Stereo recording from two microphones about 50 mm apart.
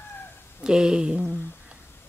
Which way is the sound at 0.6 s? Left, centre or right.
Centre.